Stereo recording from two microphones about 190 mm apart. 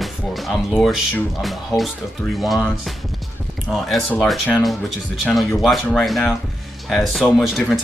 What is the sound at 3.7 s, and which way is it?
Speech, centre (ahead or behind).